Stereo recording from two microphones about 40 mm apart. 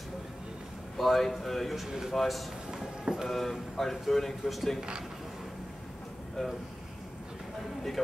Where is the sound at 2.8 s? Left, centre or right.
Centre.